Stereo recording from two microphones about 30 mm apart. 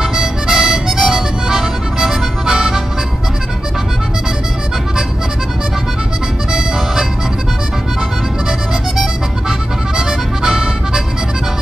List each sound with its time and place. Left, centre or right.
0.0 s music: centre
9.9 s music: right